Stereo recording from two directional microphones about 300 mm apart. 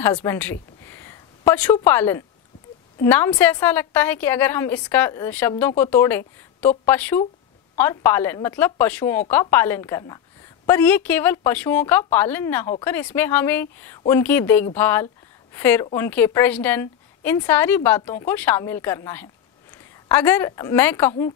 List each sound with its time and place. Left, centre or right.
0.0 s a woman's voice: centre